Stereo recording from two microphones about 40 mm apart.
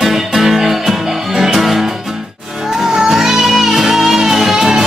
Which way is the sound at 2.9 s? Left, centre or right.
Centre.